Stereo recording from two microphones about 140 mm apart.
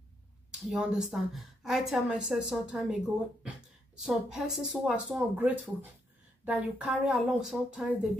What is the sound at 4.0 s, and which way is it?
A woman's voice, 5° right (ahead or behind).